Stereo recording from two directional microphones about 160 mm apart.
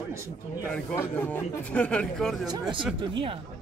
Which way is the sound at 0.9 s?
15° left (ahead or behind).